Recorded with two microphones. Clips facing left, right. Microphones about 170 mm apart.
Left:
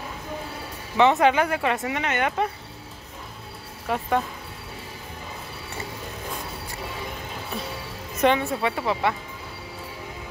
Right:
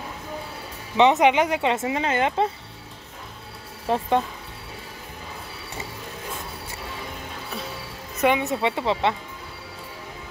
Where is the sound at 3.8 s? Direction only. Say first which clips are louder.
Right 2 dB; 30° right (ahead or behind).